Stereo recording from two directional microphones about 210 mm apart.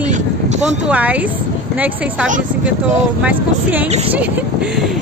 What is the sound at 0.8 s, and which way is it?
Speech, 5° right (ahead or behind).